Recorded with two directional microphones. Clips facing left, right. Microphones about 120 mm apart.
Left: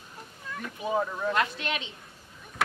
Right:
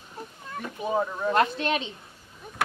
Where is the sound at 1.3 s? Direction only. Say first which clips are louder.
Right 9 dB; 35° right (ahead or behind).